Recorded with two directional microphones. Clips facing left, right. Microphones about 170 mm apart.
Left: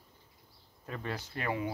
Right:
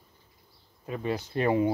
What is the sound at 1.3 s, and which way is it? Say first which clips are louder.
Speech: right 11 dB; 30° right (ahead or behind).